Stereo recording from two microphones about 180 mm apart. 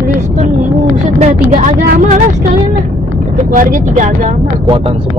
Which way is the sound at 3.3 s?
45° right (ahead or behind).